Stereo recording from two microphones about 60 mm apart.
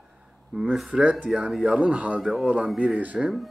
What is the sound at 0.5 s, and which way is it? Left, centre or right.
Speech, centre.